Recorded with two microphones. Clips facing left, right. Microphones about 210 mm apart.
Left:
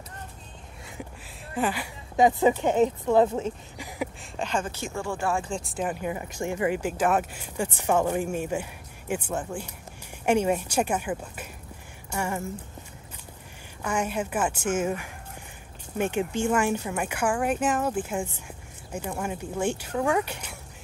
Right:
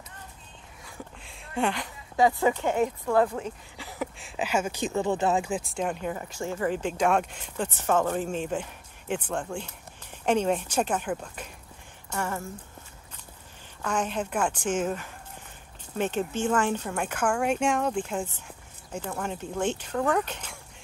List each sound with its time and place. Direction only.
1.2 s a sound: 5° left (ahead or behind)
2.1 s speech: 20° left (ahead or behind)
4.2 s speech: 5° right (ahead or behind)
5.5 s speech: centre (ahead or behind)
13.8 s speech: 10° left (ahead or behind)